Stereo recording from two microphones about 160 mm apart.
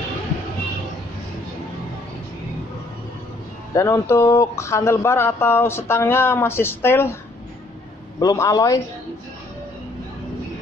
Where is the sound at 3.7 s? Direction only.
20° left (ahead or behind).